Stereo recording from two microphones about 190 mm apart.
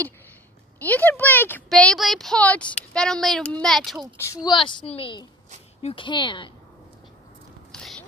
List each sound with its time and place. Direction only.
0.8 s speech: 10° left (ahead or behind)
4.2 s a woman's voice: 20° left (ahead or behind)
7.7 s a sound: 5° left (ahead or behind)